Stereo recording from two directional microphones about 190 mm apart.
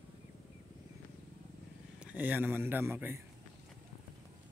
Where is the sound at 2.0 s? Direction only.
10° right (ahead or behind).